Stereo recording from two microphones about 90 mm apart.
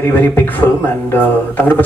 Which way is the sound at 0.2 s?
25° left (ahead or behind).